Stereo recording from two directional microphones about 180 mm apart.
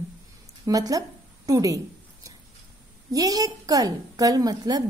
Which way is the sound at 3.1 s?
20° right (ahead or behind).